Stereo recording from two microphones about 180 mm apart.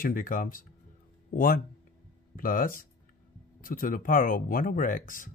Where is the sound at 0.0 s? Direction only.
50° left (ahead or behind).